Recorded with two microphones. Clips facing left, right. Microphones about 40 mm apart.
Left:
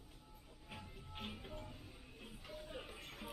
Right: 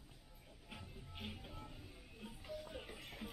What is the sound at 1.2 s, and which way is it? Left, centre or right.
Music, left.